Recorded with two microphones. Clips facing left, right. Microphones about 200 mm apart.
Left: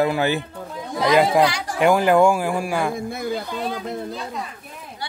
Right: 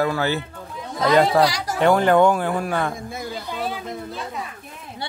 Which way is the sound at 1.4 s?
40° right (ahead or behind).